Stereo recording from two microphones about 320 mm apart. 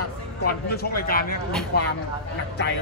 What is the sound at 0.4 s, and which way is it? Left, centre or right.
Speech, left.